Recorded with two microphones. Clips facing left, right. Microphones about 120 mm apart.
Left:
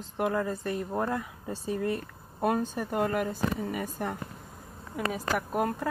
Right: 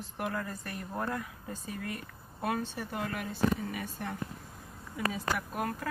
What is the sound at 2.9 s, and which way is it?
Speech, 45° left (ahead or behind).